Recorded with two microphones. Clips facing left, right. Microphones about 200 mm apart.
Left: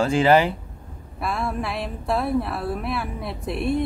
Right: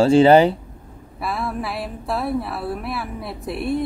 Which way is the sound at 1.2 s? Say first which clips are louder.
Even; centre (ahead or behind).